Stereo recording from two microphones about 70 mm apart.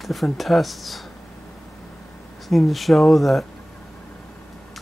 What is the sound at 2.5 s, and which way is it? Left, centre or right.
Speech, centre.